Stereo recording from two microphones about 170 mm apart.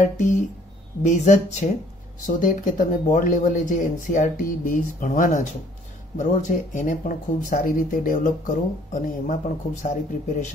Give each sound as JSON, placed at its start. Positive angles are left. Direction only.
{"t": 0.0, "sound": "speech", "side_deg": 45}